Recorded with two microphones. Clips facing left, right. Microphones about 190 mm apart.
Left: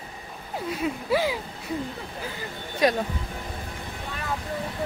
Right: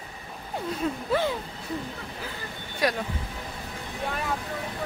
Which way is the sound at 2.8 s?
20° left (ahead or behind).